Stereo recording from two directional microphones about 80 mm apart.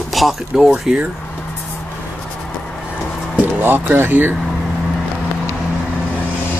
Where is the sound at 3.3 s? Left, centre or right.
Right.